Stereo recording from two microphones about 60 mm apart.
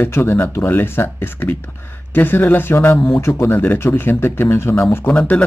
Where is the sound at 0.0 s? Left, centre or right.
Left.